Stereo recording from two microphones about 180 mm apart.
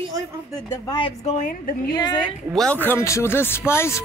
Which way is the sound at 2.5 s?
5° left (ahead or behind).